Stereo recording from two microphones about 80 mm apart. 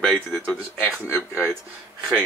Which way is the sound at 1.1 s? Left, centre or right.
Right.